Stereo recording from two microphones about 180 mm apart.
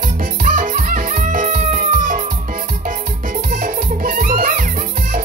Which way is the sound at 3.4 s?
45° right (ahead or behind).